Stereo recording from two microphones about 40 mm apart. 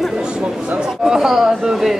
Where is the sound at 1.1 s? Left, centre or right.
Centre.